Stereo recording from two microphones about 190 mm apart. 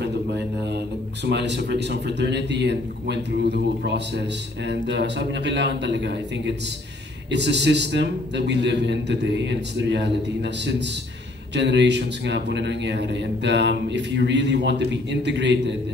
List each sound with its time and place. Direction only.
1.2 s speech: 65° right (ahead or behind)